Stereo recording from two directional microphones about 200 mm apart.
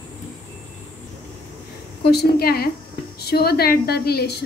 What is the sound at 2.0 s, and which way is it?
A woman's voice, 50° left (ahead or behind).